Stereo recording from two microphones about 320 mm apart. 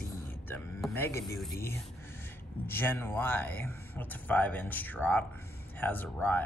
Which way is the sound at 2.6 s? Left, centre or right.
Centre.